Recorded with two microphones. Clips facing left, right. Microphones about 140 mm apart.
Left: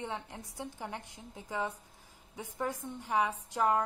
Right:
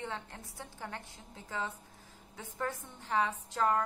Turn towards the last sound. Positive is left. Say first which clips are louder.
# left 1 dB
turn(degrees=15)  # may be behind; listen again after turning